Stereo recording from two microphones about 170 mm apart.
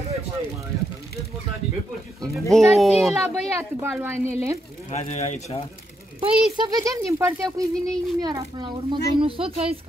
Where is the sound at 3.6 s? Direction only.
10° right (ahead or behind).